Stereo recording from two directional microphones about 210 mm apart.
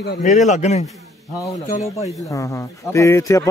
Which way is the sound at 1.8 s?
15° left (ahead or behind).